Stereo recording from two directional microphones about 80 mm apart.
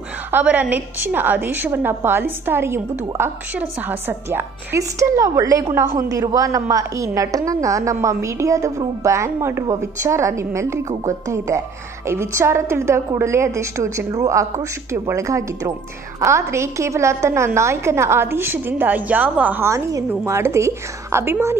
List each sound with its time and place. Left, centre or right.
0.3 s a woman's voice: centre
4.7 s a woman's voice: right
19.7 s a woman's voice: right